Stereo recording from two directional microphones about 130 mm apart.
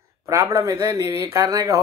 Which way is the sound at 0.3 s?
25° right (ahead or behind).